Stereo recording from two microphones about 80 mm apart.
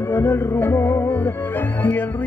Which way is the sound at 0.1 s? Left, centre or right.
Left.